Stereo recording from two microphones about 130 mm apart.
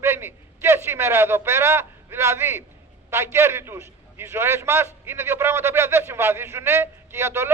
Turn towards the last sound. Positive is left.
turn(degrees=-20)  # may be behind; listen again after turning